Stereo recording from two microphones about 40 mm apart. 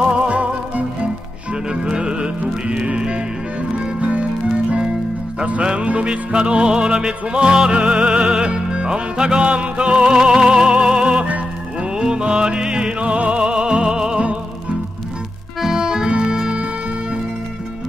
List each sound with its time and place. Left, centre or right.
0.0 s music: right
5.6 s music: right
15.6 s music: centre